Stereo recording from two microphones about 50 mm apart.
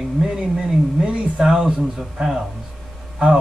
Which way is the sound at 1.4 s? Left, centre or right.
Centre.